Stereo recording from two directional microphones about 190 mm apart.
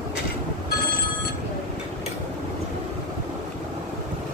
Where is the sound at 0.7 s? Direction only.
55° left (ahead or behind).